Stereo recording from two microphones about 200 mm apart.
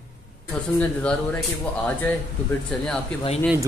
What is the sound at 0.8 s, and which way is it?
Speech, 5° left (ahead or behind).